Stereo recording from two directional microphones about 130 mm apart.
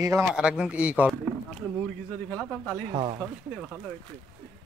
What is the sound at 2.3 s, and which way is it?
Speech, 5° left (ahead or behind).